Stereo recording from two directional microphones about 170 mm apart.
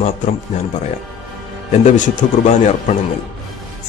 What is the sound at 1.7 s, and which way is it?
A man's voice, 45° left (ahead or behind).